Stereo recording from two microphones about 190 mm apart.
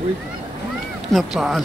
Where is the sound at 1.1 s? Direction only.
Centre (ahead or behind).